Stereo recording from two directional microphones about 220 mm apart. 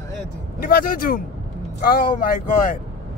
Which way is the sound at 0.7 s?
40° left (ahead or behind).